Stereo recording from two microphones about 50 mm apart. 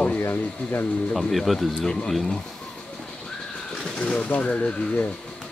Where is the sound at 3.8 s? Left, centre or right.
Centre.